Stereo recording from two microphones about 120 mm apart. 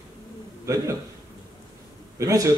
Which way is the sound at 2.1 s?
25° right (ahead or behind).